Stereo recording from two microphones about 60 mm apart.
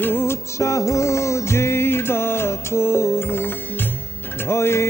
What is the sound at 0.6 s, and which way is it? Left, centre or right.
Music, left.